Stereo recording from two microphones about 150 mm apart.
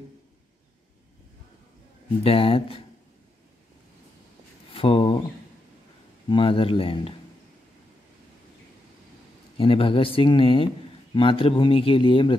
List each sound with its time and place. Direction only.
2.2 s speech: 35° left (ahead or behind)
4.7 s a sound: 40° left (ahead or behind)
6.2 s speech: 35° left (ahead or behind)
9.6 s speech: 35° left (ahead or behind)